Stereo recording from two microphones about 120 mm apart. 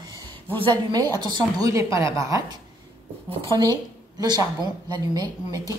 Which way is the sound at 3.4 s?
35° right (ahead or behind).